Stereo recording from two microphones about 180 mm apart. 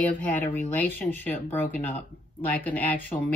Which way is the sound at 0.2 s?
10° left (ahead or behind).